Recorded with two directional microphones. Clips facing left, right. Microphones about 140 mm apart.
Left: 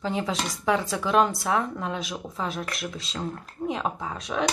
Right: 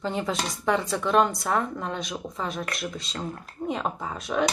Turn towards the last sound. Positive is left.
turn(degrees=0)  # may be behind; listen again after turning